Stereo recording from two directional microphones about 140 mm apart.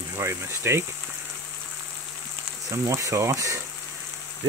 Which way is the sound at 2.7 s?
20° right (ahead or behind).